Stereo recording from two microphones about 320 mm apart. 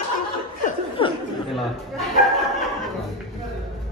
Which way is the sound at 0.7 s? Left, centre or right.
Centre.